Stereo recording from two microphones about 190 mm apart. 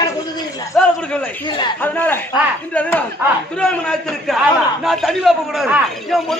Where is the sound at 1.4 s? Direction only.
25° left (ahead or behind).